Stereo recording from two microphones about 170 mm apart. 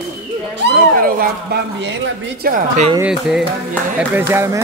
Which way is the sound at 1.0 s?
60° right (ahead or behind).